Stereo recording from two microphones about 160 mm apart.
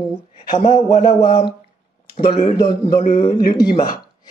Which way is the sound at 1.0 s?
30° left (ahead or behind).